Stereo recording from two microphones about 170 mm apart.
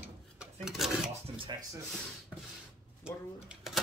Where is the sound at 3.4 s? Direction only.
Centre (ahead or behind).